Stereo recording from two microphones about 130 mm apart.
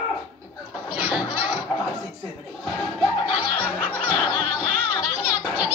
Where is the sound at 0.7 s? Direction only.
10° right (ahead or behind).